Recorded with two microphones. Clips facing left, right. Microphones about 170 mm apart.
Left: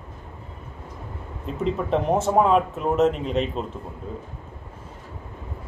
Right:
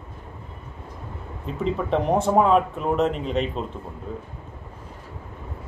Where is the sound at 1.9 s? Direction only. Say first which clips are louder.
Right 1 dB; centre (ahead or behind).